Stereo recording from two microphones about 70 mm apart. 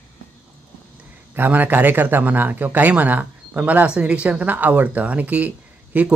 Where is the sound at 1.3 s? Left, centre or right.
Right.